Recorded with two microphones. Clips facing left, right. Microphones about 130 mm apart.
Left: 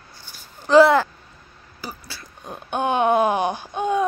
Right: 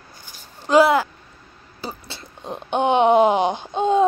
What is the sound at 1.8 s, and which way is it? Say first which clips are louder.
Speech: right 3 dB; 25° right (ahead or behind).